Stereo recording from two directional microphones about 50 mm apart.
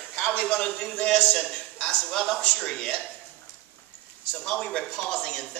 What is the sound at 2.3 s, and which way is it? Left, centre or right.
Speech, centre.